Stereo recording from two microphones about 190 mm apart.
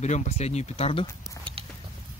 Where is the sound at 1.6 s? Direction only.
30° right (ahead or behind).